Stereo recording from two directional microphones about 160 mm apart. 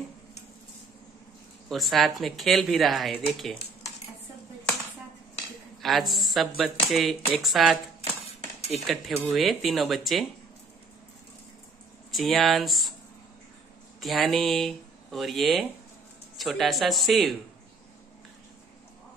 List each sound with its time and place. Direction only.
1.7 s speech: centre (ahead or behind)
5.8 s speech: centre (ahead or behind)
8.8 s speech: centre (ahead or behind)
12.1 s speech: centre (ahead or behind)
14.0 s speech: centre (ahead or behind)